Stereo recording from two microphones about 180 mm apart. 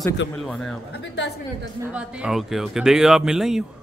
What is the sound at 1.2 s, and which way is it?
Speech, 70° left (ahead or behind).